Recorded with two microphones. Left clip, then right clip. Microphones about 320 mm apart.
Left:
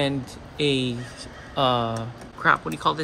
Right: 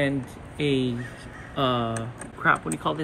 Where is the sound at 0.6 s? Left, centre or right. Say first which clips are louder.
Left 2 dB; left.